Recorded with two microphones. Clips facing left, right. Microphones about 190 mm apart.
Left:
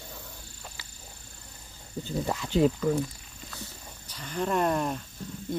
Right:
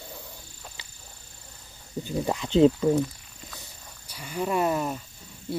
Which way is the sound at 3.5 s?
10° right (ahead or behind).